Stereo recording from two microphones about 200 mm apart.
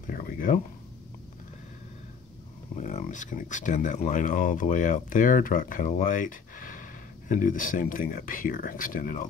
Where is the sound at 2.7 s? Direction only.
40° left (ahead or behind).